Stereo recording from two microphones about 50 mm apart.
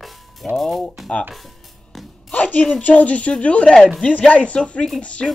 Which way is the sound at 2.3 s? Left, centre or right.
Left.